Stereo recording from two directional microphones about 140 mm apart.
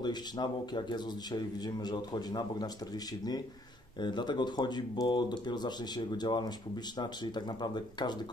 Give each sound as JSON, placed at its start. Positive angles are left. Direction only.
{"t": 0.0, "sound": "a man's voice", "side_deg": 30}